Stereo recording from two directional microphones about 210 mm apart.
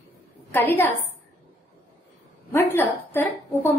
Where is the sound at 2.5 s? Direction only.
10° left (ahead or behind).